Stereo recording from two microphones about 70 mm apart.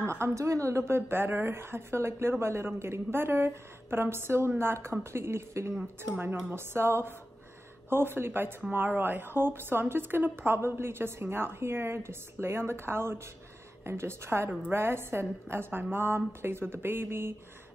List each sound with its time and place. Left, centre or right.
0.0 s a woman's voice: right
6.0 s a woman's voice: right